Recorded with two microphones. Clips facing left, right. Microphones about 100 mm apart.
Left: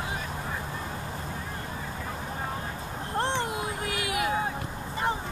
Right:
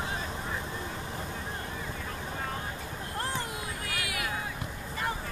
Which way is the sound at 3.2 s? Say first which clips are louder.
Left 7 dB; 25° left (ahead or behind).